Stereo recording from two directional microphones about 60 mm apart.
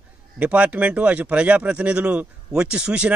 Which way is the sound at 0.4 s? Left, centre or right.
Right.